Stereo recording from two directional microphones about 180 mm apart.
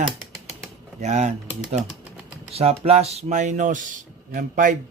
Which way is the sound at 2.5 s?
35° right (ahead or behind).